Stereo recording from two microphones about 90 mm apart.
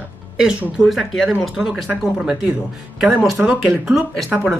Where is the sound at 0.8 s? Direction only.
5° right (ahead or behind).